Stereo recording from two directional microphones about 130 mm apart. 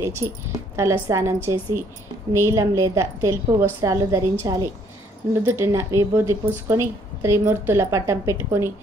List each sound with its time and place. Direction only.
0.0 s a woman's voice: 20° right (ahead or behind)